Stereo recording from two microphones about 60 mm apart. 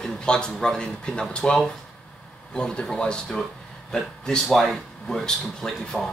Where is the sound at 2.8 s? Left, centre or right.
Centre.